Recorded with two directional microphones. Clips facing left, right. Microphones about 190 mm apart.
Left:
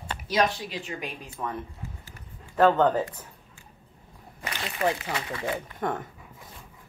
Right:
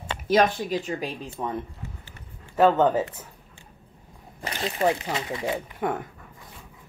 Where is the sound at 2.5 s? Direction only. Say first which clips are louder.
Right 1 dB; 10° right (ahead or behind).